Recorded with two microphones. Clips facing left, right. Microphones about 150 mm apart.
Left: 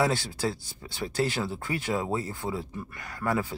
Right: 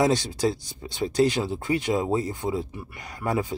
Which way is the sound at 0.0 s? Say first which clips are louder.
Right 5 dB; 20° right (ahead or behind).